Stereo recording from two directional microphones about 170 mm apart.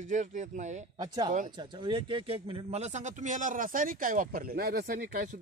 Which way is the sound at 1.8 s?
30° right (ahead or behind).